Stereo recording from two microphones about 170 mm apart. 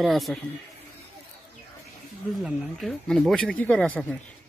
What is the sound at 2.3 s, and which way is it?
Speech, centre (ahead or behind).